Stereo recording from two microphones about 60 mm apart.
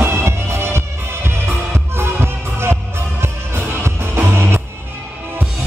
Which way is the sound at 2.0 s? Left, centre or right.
Right.